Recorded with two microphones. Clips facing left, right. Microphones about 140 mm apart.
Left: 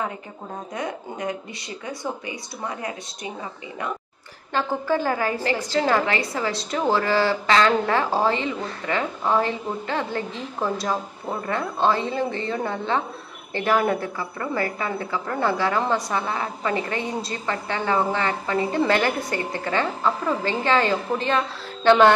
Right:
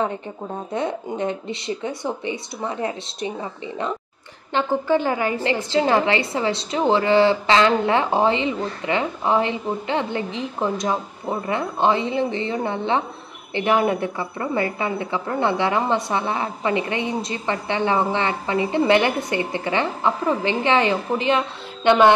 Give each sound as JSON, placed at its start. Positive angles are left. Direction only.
{"t": 0.7, "sound": "a woman's voice", "side_deg": -25}
{"t": 4.6, "sound": "a woman's voice", "side_deg": -20}